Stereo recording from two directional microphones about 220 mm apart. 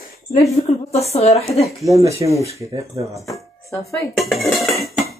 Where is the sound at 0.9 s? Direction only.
30° left (ahead or behind).